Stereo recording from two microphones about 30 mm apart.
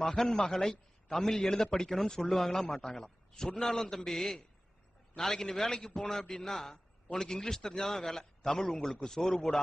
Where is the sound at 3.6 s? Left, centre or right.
Centre.